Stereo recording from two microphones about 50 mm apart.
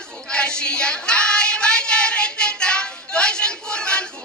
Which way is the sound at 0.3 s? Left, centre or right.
Centre.